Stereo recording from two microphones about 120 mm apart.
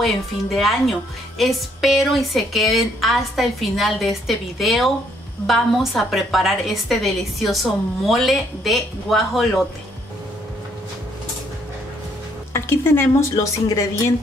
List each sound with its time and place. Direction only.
0.0 s a woman's voice: centre (ahead or behind)
12.5 s speech: 20° left (ahead or behind)